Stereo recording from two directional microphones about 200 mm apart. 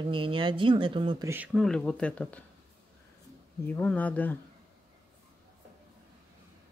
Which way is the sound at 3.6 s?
10° left (ahead or behind).